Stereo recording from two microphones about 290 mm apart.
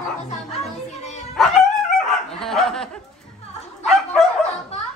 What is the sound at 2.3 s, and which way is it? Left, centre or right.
Dog, centre.